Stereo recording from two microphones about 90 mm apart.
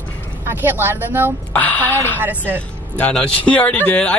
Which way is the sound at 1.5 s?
20° left (ahead or behind).